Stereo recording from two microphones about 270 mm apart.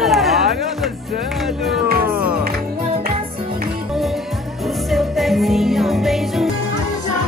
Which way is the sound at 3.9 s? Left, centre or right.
Centre.